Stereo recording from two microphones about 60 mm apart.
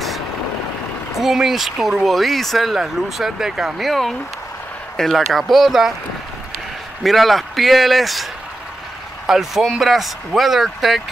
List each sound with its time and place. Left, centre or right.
1.2 s speech: centre
7.0 s speech: centre